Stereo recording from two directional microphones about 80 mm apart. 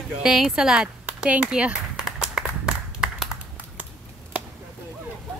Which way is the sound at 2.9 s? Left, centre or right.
Centre.